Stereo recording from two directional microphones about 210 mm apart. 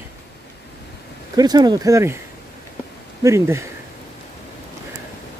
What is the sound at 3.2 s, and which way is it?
Speech, 15° right (ahead or behind).